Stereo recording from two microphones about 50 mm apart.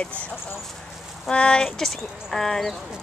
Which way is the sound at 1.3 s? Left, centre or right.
Left.